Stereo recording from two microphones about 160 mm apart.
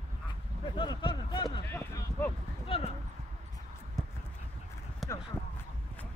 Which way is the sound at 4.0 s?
Centre (ahead or behind).